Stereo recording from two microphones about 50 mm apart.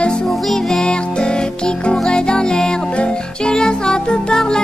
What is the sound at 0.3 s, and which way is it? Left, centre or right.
Music, centre.